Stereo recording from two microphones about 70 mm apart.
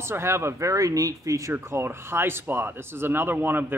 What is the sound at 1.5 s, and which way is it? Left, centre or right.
Speech, right.